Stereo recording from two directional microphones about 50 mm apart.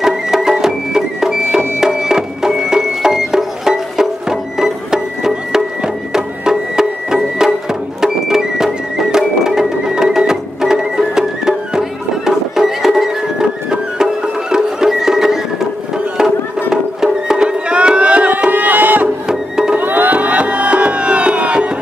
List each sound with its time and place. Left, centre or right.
0.0 s music: centre
16.7 s music: centre; by 19.0 s right
19.2 s music: centre
19.8 s music: right